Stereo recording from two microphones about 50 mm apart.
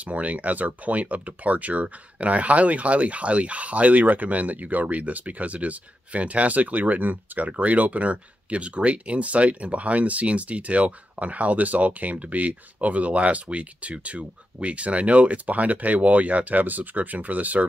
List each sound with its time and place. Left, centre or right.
0.0 s speech: right